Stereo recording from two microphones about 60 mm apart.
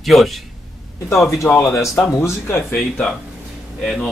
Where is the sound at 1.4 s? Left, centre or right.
Left.